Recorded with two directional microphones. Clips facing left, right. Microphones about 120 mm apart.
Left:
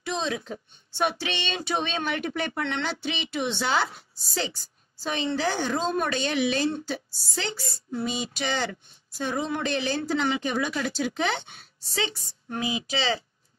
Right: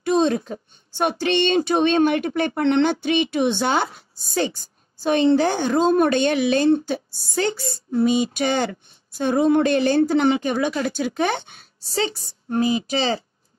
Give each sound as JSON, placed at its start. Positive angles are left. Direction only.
{"t": 0.0, "sound": "a woman's voice", "side_deg": -50}
{"t": 10.9, "sound": "a woman's voice", "side_deg": -50}